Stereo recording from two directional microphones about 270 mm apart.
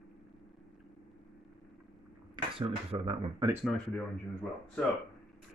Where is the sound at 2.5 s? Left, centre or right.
Centre.